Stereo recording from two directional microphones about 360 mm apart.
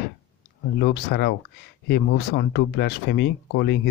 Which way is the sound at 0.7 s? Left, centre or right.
Left.